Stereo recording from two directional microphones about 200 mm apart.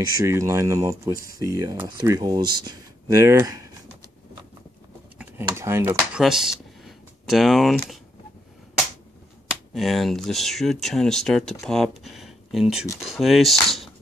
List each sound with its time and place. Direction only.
0.2 s speech: 15° right (ahead or behind)
5.2 s speech: 10° right (ahead or behind)
6.8 s a sound: centre (ahead or behind)
9.5 s speech: centre (ahead or behind)